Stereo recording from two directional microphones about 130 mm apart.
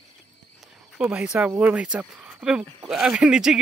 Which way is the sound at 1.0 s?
5° right (ahead or behind).